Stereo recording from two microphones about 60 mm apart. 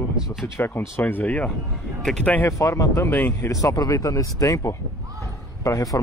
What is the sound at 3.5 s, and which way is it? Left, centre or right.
Speech, left.